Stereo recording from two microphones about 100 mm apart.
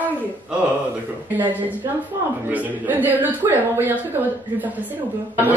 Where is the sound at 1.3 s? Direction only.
15° right (ahead or behind).